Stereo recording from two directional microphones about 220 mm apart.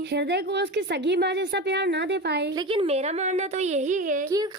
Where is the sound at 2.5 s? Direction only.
25° right (ahead or behind).